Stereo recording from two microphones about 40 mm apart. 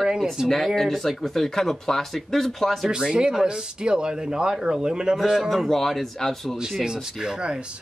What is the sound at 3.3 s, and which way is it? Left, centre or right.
Speech, centre.